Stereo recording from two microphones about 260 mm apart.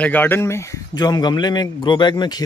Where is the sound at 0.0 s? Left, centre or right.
Centre.